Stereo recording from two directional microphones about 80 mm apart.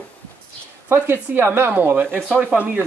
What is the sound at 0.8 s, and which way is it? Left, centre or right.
Speech, right.